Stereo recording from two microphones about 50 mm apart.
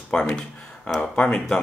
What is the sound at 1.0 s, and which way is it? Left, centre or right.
Speech, left.